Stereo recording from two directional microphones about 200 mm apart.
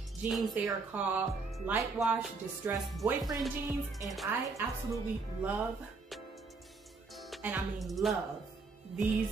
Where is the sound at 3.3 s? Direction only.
15° right (ahead or behind).